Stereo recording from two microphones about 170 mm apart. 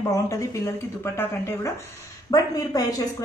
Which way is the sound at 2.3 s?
20° left (ahead or behind).